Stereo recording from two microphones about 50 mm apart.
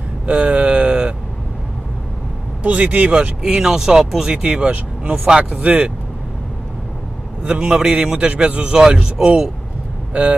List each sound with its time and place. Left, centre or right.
0.3 s a sound: right
2.6 s speech: right
3.5 s a man's voice: centre
4.4 s speech: right
7.6 s a man's voice: centre